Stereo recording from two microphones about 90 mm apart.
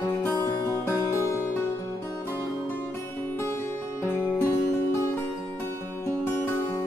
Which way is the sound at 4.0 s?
30° left (ahead or behind).